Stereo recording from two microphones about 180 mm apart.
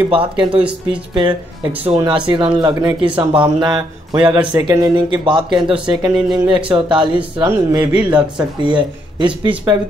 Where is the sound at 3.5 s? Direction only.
20° right (ahead or behind).